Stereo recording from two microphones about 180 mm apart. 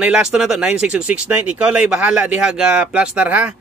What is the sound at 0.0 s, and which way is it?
Speech, 5° right (ahead or behind).